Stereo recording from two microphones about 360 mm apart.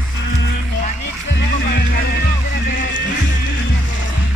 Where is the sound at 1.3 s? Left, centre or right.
Left.